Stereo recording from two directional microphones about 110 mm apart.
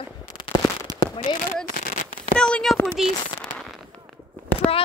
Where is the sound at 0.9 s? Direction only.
35° right (ahead or behind).